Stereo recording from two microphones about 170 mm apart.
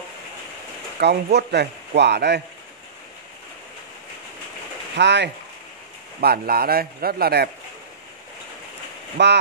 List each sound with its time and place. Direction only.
0.9 s a man's voice: 80° right
4.9 s speech: 90° right
6.2 s a man's voice: 65° right (ahead or behind)
9.2 s speech: 90° right